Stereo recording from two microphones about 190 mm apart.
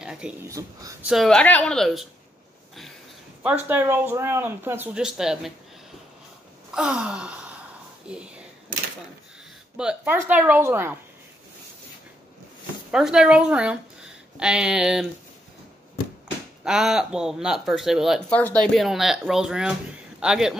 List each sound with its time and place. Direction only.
0.0 s speech: 5° right (ahead or behind)
0.5 s speech: 15° right (ahead or behind)
1.0 s speech: centre (ahead or behind)
3.4 s speech: 10° right (ahead or behind)
6.7 s gasp: 5° right (ahead or behind)
8.1 s speech: 5° right (ahead or behind)
9.8 s speech: 5° right (ahead or behind)
12.9 s a woman's voice: 5° right (ahead or behind)
16.6 s a man's voice: centre (ahead or behind)